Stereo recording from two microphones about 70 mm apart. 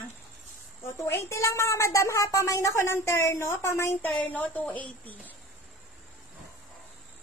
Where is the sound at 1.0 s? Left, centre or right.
Left.